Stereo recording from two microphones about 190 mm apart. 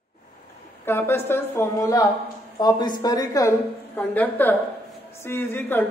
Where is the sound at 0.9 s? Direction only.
10° left (ahead or behind).